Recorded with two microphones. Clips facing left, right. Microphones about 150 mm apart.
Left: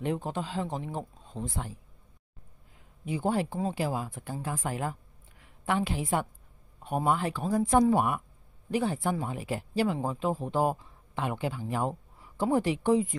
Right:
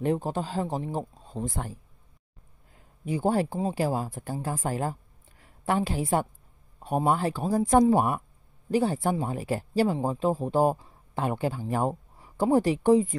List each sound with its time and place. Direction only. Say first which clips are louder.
0.0 s speech: right 4 dB; 40° right (ahead or behind)
3.1 s a woman's voice: right 3 dB; 40° right (ahead or behind)